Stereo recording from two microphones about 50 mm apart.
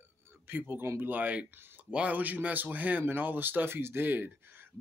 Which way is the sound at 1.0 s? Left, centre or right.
Right.